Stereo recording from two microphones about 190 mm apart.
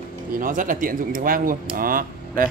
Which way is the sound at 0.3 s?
45° right (ahead or behind).